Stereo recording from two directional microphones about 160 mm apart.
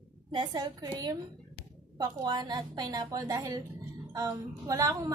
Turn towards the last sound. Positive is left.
turn(degrees=-15)  # may be behind; listen again after turning